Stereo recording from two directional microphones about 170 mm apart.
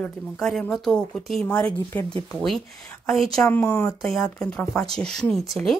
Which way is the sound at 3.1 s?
Centre (ahead or behind).